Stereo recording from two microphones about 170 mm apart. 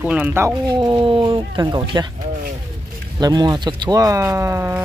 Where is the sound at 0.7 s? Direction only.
25° right (ahead or behind).